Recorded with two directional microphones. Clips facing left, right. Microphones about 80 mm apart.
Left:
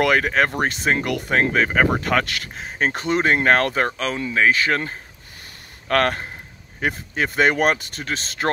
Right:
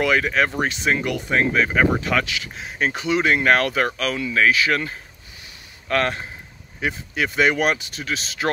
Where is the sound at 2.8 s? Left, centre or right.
Left.